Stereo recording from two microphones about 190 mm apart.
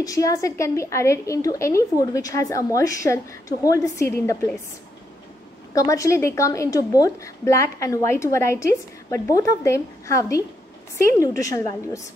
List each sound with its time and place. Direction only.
0.0 s a woman's voice: 20° left (ahead or behind)
5.8 s a woman's voice: 15° left (ahead or behind)